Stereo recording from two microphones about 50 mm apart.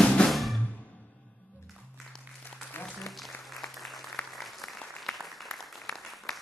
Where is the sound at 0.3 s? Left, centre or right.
Centre.